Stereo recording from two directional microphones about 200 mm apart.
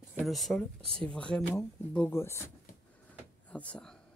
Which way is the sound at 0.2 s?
Centre (ahead or behind).